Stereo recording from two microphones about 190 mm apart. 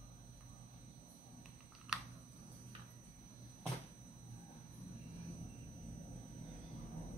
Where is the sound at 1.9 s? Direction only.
5° right (ahead or behind).